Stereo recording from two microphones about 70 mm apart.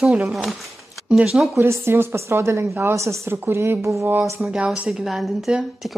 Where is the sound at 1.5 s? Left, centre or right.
Right.